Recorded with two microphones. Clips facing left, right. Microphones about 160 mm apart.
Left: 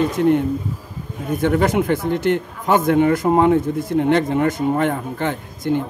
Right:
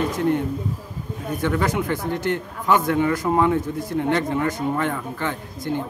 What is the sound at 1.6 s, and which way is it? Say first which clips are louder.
Speech: left 5 dB; 25° left (ahead or behind).